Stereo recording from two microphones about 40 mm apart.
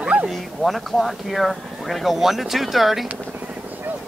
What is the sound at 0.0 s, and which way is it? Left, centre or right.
Bow-wow, right.